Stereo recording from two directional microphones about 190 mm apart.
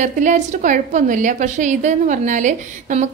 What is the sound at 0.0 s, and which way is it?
A woman's voice, 40° right (ahead or behind).